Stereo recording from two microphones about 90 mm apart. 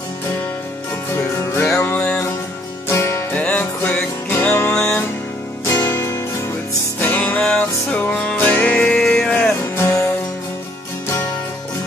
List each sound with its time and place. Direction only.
1.1 s music: 25° left (ahead or behind)
2.9 s music: 30° left (ahead or behind)
3.3 s music: 15° left (ahead or behind)
5.7 s music: 25° left (ahead or behind)
9.6 s music: 30° left (ahead or behind)